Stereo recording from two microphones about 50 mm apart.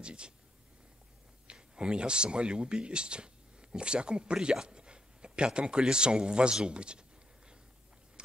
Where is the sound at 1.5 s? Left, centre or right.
Centre.